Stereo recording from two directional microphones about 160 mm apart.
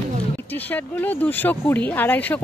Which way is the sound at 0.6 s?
10° left (ahead or behind).